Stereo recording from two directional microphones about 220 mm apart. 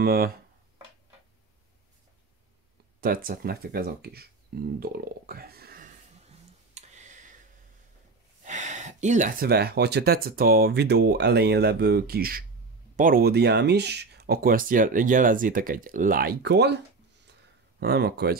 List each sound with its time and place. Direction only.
0.0 s speech: 45° right (ahead or behind)
3.0 s speech: 40° right (ahead or behind)
6.7 s a sound: 35° right (ahead or behind)
8.5 s speech: 35° right (ahead or behind); by 16.7 s 50° right (ahead or behind)
17.7 s speech: 45° right (ahead or behind)